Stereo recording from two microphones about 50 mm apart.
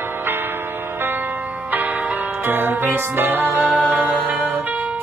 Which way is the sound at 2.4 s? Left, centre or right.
Right.